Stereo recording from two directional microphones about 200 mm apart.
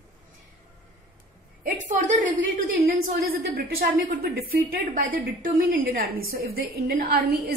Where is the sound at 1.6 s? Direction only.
40° right (ahead or behind).